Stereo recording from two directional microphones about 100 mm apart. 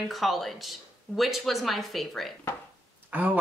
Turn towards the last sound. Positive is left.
turn(degrees=-15)  # may be behind; listen again after turning